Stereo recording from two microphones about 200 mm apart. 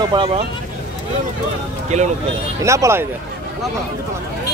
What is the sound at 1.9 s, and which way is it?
Speech, 35° right (ahead or behind).